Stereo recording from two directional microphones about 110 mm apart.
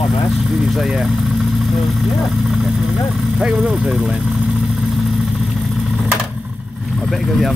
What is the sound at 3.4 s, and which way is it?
Speech, 5° right (ahead or behind).